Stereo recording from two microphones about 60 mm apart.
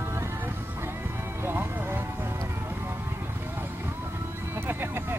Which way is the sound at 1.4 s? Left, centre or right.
Right.